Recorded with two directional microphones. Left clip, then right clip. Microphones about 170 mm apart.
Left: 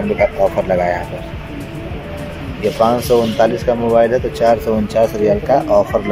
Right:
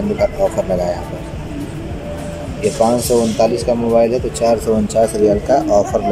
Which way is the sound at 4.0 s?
10° right (ahead or behind).